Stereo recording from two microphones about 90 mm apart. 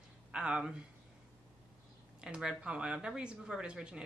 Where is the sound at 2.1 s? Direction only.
10° right (ahead or behind).